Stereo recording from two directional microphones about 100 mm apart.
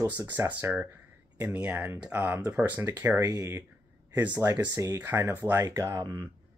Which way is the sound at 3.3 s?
35° right (ahead or behind).